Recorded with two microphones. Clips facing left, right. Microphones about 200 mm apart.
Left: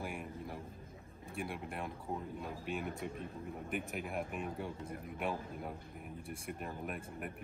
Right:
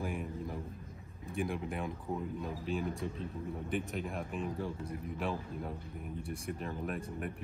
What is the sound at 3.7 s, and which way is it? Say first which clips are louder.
Speech: right 2 dB; 10° left (ahead or behind).